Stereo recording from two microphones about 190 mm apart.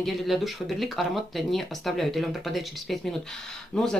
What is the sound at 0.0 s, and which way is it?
Speech, centre (ahead or behind).